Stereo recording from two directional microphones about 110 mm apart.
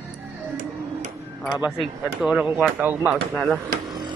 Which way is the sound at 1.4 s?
Centre (ahead or behind).